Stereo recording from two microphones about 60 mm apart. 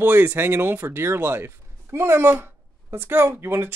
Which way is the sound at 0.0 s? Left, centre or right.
Right.